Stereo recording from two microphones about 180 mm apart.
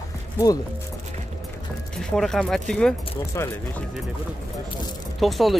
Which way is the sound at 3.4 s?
15° left (ahead or behind).